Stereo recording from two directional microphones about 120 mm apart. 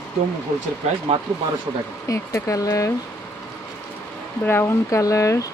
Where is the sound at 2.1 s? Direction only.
25° left (ahead or behind).